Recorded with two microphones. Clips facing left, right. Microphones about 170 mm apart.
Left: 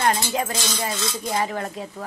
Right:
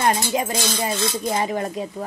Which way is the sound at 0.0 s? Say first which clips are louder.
Right 2 dB; 20° right (ahead or behind).